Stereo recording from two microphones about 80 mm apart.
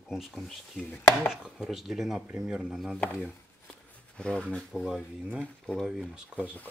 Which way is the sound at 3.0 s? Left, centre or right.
Centre.